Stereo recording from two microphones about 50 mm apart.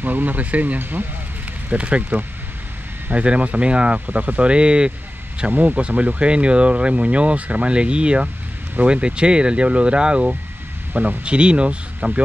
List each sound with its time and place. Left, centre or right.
0.0 s speech: right
0.7 s speech: right
1.7 s speech: right
5.5 s speech: right
5.8 s speech: right
10.9 s speech: right
11.2 s speech: right